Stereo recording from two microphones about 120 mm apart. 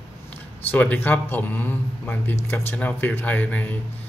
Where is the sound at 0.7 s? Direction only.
15° left (ahead or behind).